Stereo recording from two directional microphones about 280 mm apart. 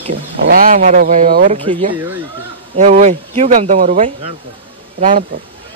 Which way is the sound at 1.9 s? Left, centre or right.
Centre.